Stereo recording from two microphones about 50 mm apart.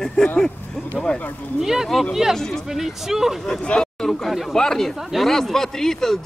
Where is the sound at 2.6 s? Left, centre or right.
Centre.